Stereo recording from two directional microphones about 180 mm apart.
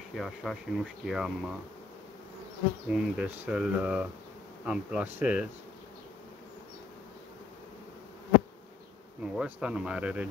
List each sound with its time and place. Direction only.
0.1 s speech: centre (ahead or behind)
2.9 s speech: 5° right (ahead or behind)
9.2 s speech: 5° right (ahead or behind)